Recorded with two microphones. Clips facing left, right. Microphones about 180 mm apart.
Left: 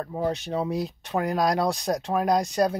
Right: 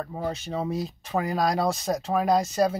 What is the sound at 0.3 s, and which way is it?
Speech, centre (ahead or behind).